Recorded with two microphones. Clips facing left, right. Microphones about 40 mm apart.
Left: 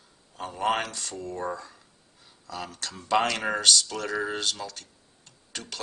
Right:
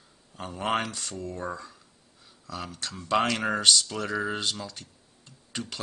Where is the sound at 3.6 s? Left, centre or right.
Centre.